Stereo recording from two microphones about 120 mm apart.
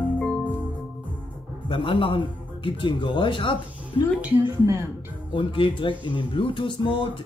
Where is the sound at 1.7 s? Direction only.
45° left (ahead or behind).